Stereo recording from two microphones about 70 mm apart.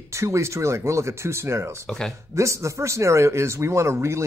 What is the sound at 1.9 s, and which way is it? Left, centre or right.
Speech, centre.